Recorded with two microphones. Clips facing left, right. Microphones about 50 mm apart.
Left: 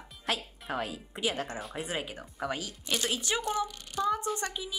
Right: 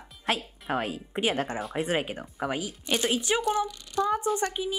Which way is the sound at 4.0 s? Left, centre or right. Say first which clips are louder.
Right 3 dB; right.